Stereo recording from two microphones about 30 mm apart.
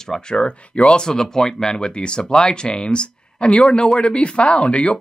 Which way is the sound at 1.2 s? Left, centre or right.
Centre.